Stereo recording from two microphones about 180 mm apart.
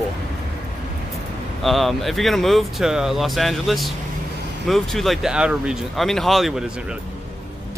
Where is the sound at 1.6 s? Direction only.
Centre (ahead or behind).